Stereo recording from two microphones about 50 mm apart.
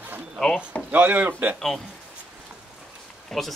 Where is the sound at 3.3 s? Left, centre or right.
Centre.